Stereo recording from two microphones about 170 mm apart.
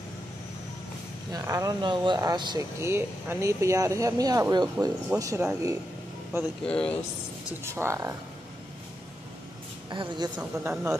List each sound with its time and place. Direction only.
1.3 s speech: 20° right (ahead or behind)
6.6 s speech: 5° left (ahead or behind)
7.6 s speech: 15° right (ahead or behind)
9.8 s speech: 25° right (ahead or behind)
10.6 s speech: 10° right (ahead or behind)